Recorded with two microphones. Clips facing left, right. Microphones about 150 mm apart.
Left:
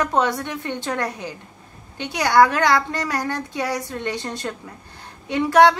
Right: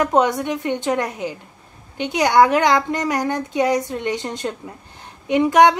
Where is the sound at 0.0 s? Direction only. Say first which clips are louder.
Right 4 dB; 15° right (ahead or behind).